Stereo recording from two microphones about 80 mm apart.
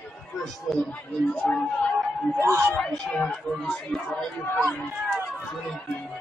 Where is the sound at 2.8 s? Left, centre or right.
Centre.